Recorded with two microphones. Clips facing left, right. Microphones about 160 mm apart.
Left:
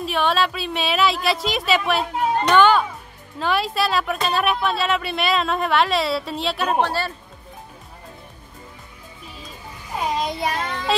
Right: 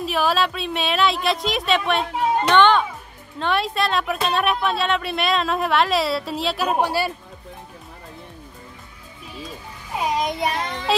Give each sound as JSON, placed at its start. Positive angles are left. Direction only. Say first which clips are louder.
{"t": 0.0, "sound": "speech", "louder": "even", "side_deg": 0}
{"t": 10.1, "sound": "a child's voice", "louder": "right 1 dB", "side_deg": -15}
{"t": 10.9, "sound": "speech", "louder": "right 1 dB", "side_deg": 0}